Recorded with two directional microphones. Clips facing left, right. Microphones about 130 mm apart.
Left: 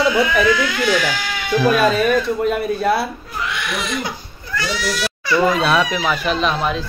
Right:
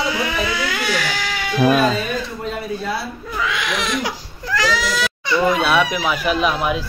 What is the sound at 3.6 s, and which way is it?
Speech, 90° right.